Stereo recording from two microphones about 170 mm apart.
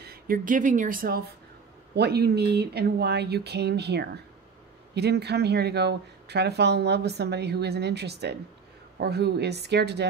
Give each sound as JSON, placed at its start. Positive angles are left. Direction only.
{"t": 0.0, "sound": "speech", "side_deg": -60}
{"t": 2.0, "sound": "speech", "side_deg": -70}